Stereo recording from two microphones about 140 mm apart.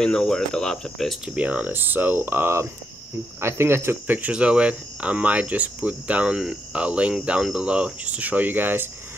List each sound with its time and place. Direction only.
0.0 s speech: 5° left (ahead or behind); by 8.8 s 15° right (ahead or behind)